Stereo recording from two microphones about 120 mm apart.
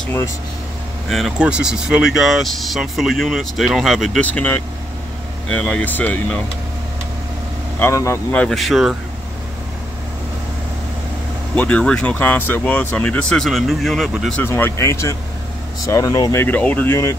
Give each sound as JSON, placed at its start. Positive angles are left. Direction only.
{"t": 1.0, "sound": "speech", "side_deg": 0}
{"t": 4.2, "sound": "speech", "side_deg": 15}
{"t": 7.8, "sound": "speech", "side_deg": 25}
{"t": 8.3, "sound": "speech", "side_deg": 5}
{"t": 11.5, "sound": "speech", "side_deg": 10}
{"t": 14.3, "sound": "speech", "side_deg": 20}